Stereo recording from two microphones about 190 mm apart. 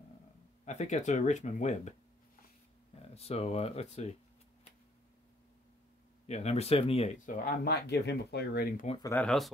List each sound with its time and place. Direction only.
0.7 s speech: 40° left (ahead or behind)
3.0 s speech: 30° left (ahead or behind)
6.2 s speech: 35° left (ahead or behind)
7.2 s speech: 50° left (ahead or behind)
9.0 s speech: 10° left (ahead or behind)